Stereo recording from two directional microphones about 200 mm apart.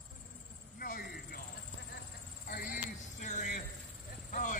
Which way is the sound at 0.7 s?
45° left (ahead or behind).